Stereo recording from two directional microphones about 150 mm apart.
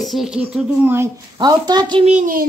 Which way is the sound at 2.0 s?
60° right (ahead or behind).